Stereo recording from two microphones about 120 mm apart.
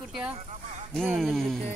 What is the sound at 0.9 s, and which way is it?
Speech, 5° left (ahead or behind).